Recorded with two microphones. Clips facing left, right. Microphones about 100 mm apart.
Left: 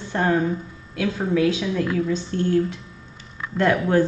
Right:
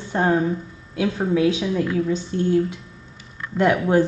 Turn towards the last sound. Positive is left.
turn(degrees=-15)  # may be behind; listen again after turning